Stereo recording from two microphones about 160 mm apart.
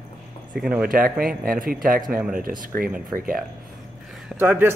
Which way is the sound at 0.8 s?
65° right (ahead or behind).